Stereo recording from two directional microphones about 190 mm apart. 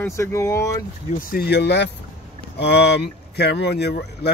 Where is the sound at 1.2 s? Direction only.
50° left (ahead or behind).